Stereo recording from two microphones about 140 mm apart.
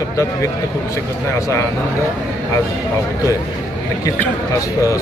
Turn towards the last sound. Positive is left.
turn(degrees=25)  # may be behind; listen again after turning